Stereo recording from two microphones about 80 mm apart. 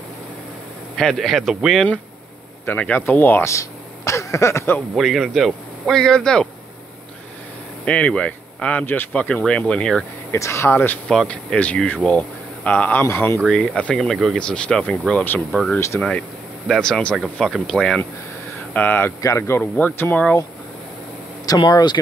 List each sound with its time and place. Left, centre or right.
0.9 s speech: centre
2.6 s speech: left
4.9 s speech: centre
7.8 s speech: centre
10.3 s speech: left
11.1 s speech: centre
13.9 s speech: centre
14.4 s speech: centre
18.7 s speech: left
19.2 s speech: left
19.6 s speech: left
21.5 s speech: left